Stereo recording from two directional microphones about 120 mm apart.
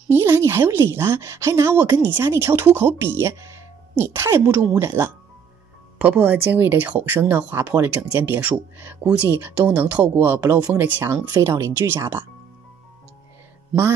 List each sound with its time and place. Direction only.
0.1 s speech: 20° right (ahead or behind)
10.4 s speech: 30° right (ahead or behind)
10.7 s speech: 15° right (ahead or behind)